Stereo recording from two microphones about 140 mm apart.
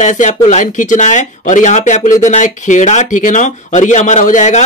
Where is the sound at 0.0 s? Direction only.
60° left (ahead or behind).